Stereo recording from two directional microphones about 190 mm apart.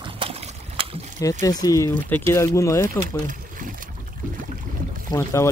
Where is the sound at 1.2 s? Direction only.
15° left (ahead or behind).